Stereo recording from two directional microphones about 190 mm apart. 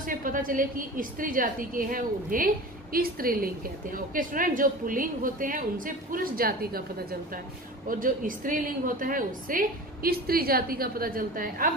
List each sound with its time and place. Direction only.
0.0 s a woman's voice: 45° right (ahead or behind)